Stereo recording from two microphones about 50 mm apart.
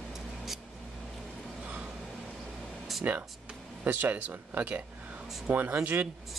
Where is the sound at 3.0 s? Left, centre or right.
Right.